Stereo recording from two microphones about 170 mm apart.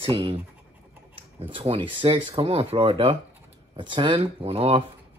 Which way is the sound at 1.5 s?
35° right (ahead or behind).